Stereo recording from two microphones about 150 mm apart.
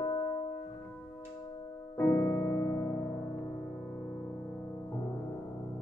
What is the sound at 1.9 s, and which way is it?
Keyboard, 15° left (ahead or behind).